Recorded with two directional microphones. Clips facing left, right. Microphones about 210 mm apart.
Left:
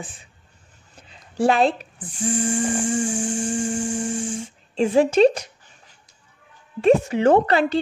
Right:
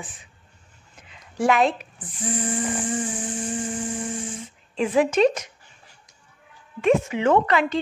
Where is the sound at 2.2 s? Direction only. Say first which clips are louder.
Left 4 dB; 45° left (ahead or behind).